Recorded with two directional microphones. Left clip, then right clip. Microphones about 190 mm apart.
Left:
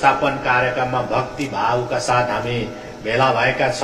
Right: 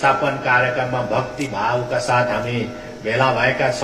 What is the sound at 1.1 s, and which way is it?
A man's voice, 25° left (ahead or behind).